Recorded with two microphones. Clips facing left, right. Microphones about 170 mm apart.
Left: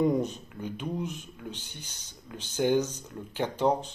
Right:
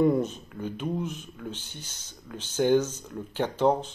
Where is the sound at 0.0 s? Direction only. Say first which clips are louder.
Right 3 dB; 15° left (ahead or behind).